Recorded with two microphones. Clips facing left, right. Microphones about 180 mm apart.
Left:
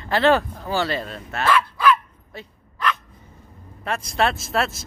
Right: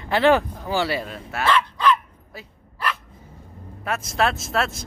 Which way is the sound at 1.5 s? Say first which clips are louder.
Left 1 dB; 10° left (ahead or behind).